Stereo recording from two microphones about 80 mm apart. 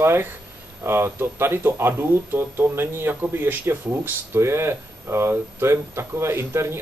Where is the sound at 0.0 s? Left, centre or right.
Right.